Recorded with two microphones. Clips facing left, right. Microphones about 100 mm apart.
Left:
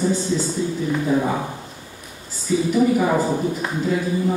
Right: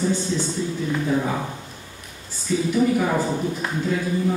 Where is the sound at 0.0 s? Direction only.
5° left (ahead or behind).